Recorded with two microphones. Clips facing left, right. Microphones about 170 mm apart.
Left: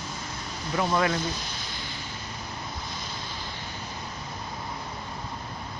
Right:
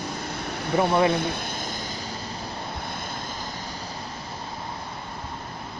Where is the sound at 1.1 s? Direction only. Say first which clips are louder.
Right 4 dB; 60° right (ahead or behind).